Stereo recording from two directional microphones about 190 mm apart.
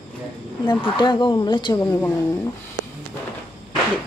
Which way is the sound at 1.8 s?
10° left (ahead or behind).